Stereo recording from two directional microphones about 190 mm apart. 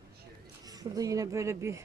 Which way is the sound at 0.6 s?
20° right (ahead or behind).